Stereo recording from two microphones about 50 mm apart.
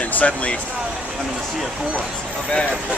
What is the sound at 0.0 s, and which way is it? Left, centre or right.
Speech, left.